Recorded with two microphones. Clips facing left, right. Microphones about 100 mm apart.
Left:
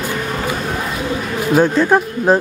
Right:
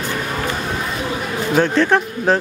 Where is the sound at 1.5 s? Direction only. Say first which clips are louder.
Left 3 dB; 10° left (ahead or behind).